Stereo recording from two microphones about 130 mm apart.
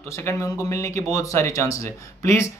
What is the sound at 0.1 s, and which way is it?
Speech, 20° left (ahead or behind).